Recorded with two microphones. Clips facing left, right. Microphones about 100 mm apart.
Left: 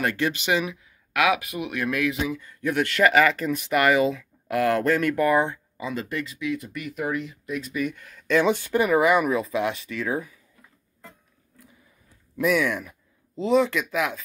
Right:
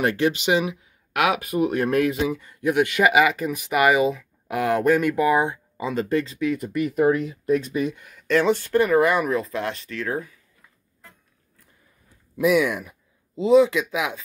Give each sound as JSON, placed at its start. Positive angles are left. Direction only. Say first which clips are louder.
{"t": 0.0, "sound": "speech", "louder": "right 4 dB", "side_deg": -20}
{"t": 2.4, "sound": "speech", "louder": "right 5 dB", "side_deg": -15}
{"t": 5.8, "sound": "speech", "louder": "right 7 dB", "side_deg": -25}
{"t": 6.5, "sound": "speech", "louder": "right 7 dB", "side_deg": -45}
{"t": 7.9, "sound": "speech", "louder": "even", "side_deg": -10}
{"t": 8.3, "sound": "speech", "louder": "right 1 dB", "side_deg": 5}
{"t": 12.4, "sound": "speech", "louder": "right 3 dB", "side_deg": -5}